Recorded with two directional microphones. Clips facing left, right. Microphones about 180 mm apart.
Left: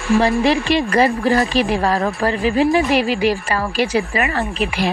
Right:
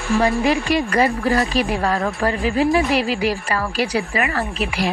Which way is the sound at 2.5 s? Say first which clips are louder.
Left 2 dB; 20° left (ahead or behind).